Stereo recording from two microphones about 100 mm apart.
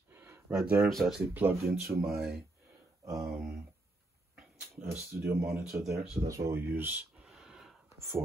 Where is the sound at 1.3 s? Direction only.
20° right (ahead or behind).